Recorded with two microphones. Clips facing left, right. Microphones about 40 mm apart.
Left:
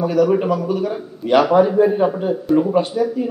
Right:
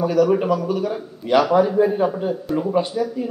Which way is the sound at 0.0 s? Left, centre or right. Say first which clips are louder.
Left 1 dB; centre.